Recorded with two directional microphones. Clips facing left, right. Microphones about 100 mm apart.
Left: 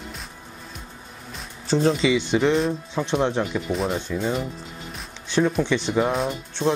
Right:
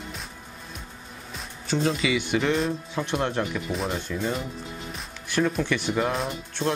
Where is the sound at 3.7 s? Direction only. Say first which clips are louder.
Left 4 dB; 5° left (ahead or behind).